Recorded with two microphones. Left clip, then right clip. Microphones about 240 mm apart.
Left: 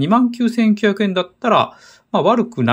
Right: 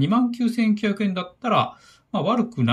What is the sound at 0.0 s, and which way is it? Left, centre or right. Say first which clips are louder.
Speech: left 6 dB; centre.